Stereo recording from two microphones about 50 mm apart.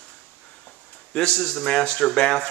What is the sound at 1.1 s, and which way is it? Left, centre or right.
Speech, centre.